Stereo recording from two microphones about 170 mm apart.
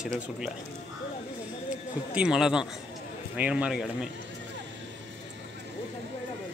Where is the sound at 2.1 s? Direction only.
5° right (ahead or behind).